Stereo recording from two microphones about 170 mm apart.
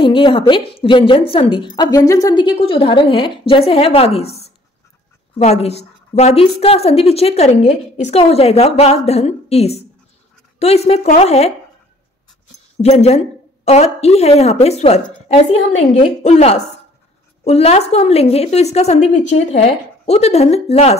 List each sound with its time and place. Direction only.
0.0 s a woman's voice: 30° left (ahead or behind)
12.8 s a woman's voice: 40° left (ahead or behind)
16.2 s a woman's voice: 40° left (ahead or behind)